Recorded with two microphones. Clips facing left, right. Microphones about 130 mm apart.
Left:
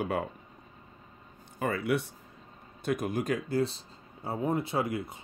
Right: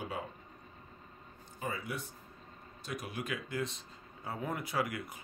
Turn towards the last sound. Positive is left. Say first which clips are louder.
# left 5 dB
turn(degrees=25)  # may be behind; listen again after turning